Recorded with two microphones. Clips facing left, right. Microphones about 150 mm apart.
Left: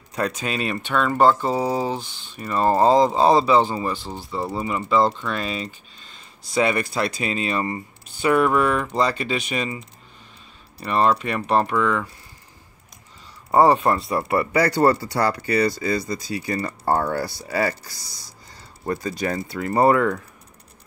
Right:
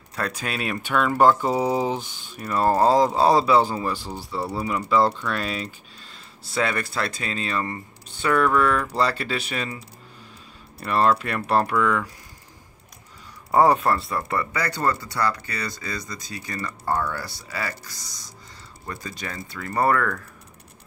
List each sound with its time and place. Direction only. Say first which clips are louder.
0.4 s speech: left 3 dB; 5° right (ahead or behind)
1.8 s a sound: even; 15° right (ahead or behind)
2.3 s speech: left 1 dB; centre (ahead or behind)
6.5 s speech: left 4 dB; 15° left (ahead or behind)
9.1 s speech: left 3 dB; centre (ahead or behind)
13.5 s speech: left 2 dB; 10° left (ahead or behind)
14.0 s speech: left 5 dB; 20° left (ahead or behind)
14.8 s speech: left 3 dB; 35° left (ahead or behind)
18.9 s speech: left 10 dB; 35° left (ahead or behind); by 20.2 s 20° left (ahead or behind)